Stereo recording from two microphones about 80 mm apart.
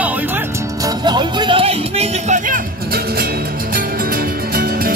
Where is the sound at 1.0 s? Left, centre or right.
Right.